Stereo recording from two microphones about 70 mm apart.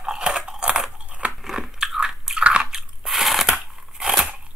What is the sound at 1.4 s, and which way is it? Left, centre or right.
Biting, centre.